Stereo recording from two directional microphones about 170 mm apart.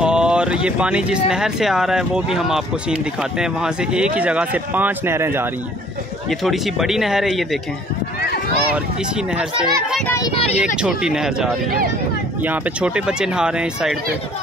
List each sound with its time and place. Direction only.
0.0 s speech: 5° right (ahead or behind)
6.4 s speech: centre (ahead or behind)
9.3 s speech: 5° right (ahead or behind)
10.0 s speech: 15° left (ahead or behind)
10.3 s speech: 35° left (ahead or behind)
10.8 s speech: 5° right (ahead or behind)